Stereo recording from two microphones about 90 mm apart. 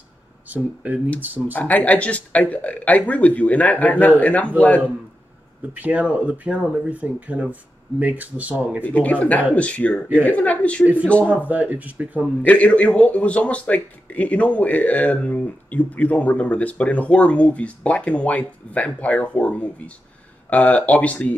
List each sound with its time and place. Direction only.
0.5 s speech: 15° right (ahead or behind)
1.5 s a man's voice: 20° left (ahead or behind)
5.7 s speech: 15° right (ahead or behind)
8.8 s a man's voice: 15° left (ahead or behind)
11.2 s speech: 15° right (ahead or behind)
12.4 s a man's voice: 15° left (ahead or behind)